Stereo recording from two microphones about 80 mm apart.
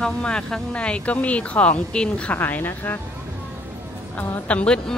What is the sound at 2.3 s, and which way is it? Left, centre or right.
Speech, left.